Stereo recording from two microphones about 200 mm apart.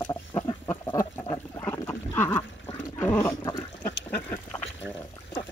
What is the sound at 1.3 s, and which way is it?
Wild animals, 15° left (ahead or behind).